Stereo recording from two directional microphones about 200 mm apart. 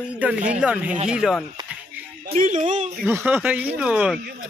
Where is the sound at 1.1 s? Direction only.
Centre (ahead or behind).